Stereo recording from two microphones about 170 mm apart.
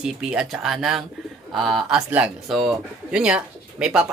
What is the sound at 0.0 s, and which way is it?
Speech, 5° right (ahead or behind).